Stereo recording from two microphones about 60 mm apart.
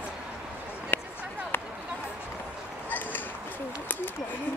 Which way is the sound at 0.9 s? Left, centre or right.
Left.